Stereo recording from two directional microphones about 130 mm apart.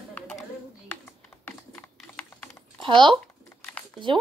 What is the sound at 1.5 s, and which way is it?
Typing, 10° left (ahead or behind).